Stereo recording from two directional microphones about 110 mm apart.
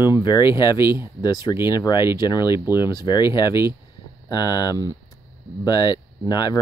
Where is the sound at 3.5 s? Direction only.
25° right (ahead or behind).